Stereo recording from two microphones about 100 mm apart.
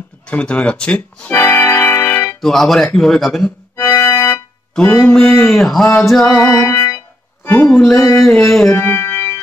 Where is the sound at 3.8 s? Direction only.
25° left (ahead or behind).